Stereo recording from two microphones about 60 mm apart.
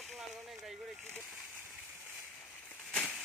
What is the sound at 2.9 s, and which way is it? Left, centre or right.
Crushing, centre.